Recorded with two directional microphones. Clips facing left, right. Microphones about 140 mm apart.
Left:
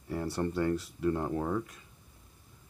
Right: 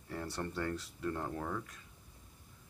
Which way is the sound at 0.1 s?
15° left (ahead or behind).